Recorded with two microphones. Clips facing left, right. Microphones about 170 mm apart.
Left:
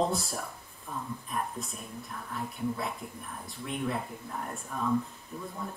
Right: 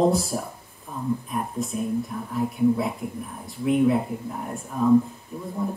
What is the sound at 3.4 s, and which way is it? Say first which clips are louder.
Speech: right 14 dB; 5° right (ahead or behind).